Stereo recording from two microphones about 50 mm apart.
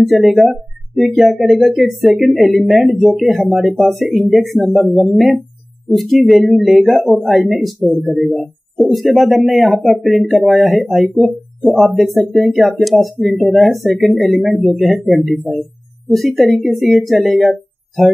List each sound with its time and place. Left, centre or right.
0.0 s speech: centre